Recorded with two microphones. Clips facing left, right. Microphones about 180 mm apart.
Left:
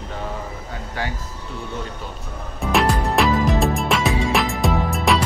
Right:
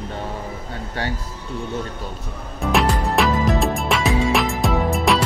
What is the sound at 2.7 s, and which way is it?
Music, centre (ahead or behind).